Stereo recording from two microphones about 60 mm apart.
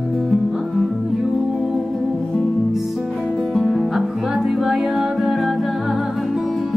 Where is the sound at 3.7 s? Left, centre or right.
Centre.